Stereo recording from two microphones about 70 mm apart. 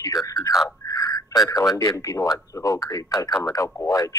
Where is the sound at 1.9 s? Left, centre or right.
Left.